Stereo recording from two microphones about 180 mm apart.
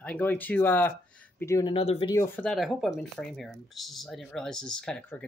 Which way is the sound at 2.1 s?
10° left (ahead or behind).